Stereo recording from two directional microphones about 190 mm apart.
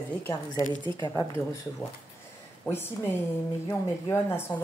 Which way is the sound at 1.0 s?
20° left (ahead or behind).